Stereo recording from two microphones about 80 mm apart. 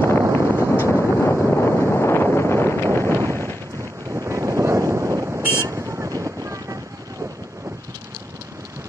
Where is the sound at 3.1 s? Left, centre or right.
Left.